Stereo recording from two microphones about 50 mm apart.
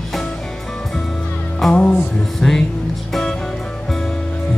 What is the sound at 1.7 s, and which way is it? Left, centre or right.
Music, left.